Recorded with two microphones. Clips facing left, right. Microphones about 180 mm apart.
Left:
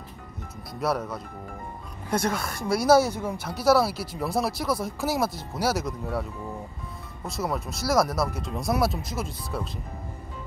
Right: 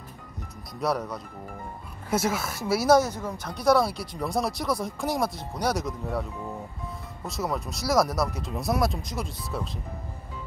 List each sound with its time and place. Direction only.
0.7 s speech: centre (ahead or behind)
3.0 s speech: 10° left (ahead or behind)
7.2 s speech: centre (ahead or behind)